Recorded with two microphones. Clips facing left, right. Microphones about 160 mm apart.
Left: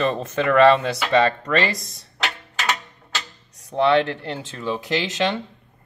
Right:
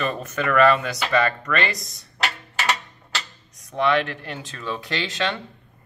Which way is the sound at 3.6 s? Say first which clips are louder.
Left 4 dB; 30° left (ahead or behind).